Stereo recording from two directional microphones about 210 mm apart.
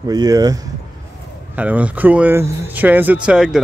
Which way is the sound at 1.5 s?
5° right (ahead or behind).